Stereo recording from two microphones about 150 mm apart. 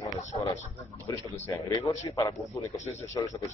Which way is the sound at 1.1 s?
20° left (ahead or behind).